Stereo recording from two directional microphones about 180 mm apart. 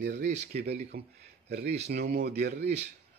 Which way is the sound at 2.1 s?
65° right (ahead or behind).